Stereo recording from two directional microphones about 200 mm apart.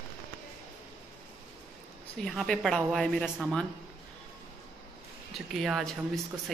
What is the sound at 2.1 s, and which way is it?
Speech, centre (ahead or behind).